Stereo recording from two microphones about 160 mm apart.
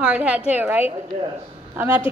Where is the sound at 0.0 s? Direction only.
5° right (ahead or behind).